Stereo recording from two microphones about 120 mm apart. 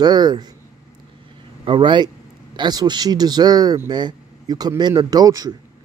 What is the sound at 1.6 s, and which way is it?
Speech, 45° right (ahead or behind).